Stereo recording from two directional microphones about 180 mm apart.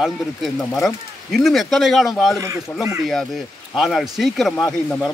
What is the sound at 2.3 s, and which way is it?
Speech, 15° right (ahead or behind).